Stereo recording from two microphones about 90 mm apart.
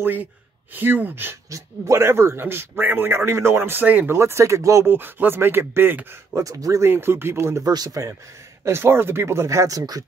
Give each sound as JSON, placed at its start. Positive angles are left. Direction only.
{"t": 0.0, "sound": "a man's voice", "side_deg": -20}
{"t": 1.5, "sound": "a man's voice", "side_deg": -30}
{"t": 4.2, "sound": "speech", "side_deg": -30}
{"t": 4.9, "sound": "a man's voice", "side_deg": -25}
{"t": 6.4, "sound": "speech", "side_deg": -40}
{"t": 6.9, "sound": "a man's voice", "side_deg": -25}
{"t": 7.6, "sound": "speech", "side_deg": -45}
{"t": 8.6, "sound": "a man's voice", "side_deg": -30}